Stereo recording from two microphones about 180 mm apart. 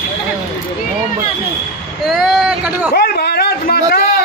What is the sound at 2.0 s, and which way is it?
Speech, centre (ahead or behind).